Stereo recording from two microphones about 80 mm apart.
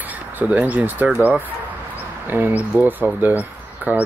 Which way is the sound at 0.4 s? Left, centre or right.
Right.